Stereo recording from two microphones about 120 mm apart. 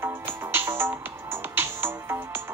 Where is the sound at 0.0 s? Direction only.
20° right (ahead or behind).